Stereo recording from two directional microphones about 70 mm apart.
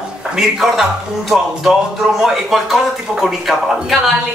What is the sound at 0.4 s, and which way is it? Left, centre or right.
Speech, centre.